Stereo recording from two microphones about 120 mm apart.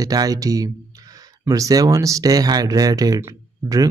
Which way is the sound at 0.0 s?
30° right (ahead or behind).